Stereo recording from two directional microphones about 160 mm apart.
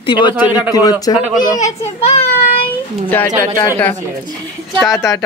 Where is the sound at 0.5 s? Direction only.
10° right (ahead or behind).